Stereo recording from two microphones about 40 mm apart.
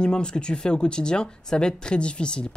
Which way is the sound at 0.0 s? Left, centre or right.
Left.